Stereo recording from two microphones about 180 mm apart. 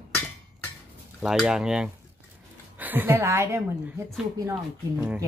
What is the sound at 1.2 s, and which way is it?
Speech, 5° right (ahead or behind).